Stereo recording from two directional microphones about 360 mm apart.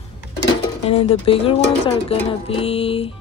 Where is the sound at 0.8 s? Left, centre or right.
Centre.